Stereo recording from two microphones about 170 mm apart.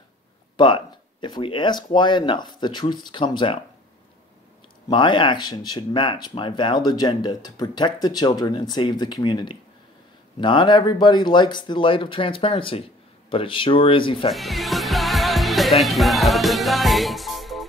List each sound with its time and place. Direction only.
0.6 s speech: 30° left (ahead or behind)
4.8 s speech: 30° left (ahead or behind)
14.3 s music: centre (ahead or behind)